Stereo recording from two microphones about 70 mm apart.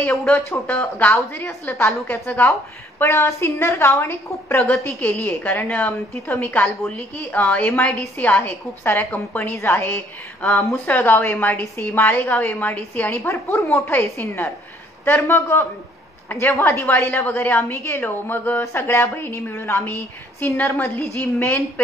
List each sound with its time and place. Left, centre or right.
0.7 s a woman's voice: left
1.3 s a woman's voice: left
9.6 s a woman's voice: left
13.3 s a woman's voice: left
18.6 s a woman's voice: left